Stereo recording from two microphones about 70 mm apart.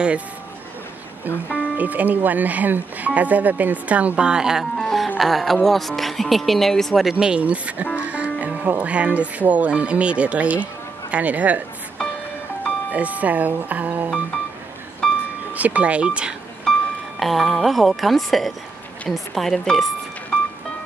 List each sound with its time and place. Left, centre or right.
1.8 s speech: right; by 4.8 s centre
4.8 s music: centre
5.2 s speech: centre
7.1 s speech: centre
12.9 s speech: right
15.0 s music: centre
15.5 s speech: right
16.7 s music: centre
17.2 s speech: centre